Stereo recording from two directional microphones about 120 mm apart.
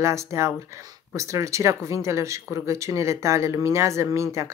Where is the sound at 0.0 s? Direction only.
25° right (ahead or behind).